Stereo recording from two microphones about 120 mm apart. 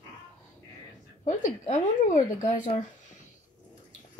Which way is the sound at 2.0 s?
90° left.